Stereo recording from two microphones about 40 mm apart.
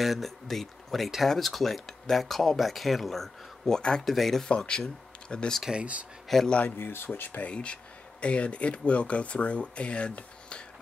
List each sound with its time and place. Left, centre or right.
0.0 s speech: centre
4.5 s speech: left
4.8 s a sound: left
5.8 s speech: right
6.3 s speech: centre
6.8 s speech: left
7.1 s speech: left
7.4 s speech: left